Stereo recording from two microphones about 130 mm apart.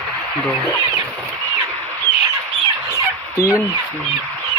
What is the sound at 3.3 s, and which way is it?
Speech, 25° left (ahead or behind).